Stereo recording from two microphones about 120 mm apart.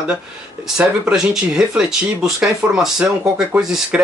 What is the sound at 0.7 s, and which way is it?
Speech, 5° right (ahead or behind).